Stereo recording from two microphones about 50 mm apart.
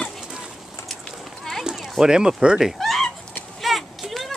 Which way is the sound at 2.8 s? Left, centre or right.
Centre.